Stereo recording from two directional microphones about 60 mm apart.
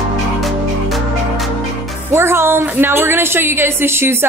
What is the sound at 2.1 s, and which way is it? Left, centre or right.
Speech, right.